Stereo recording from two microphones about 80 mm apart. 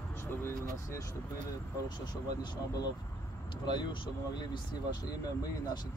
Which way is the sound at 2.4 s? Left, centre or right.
Left.